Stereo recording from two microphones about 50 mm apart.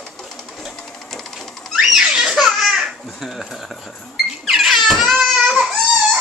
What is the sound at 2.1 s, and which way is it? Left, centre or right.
Baby laughter, centre.